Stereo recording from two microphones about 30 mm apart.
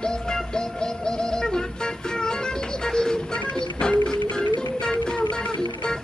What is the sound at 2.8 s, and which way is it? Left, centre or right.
Music, left.